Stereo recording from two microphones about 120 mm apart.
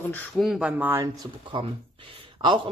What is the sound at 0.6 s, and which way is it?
Speech, 15° right (ahead or behind).